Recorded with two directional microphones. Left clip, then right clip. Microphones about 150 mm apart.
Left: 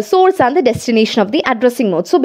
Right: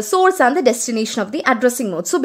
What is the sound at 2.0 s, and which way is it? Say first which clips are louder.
Speech: left 6 dB; 25° left (ahead or behind).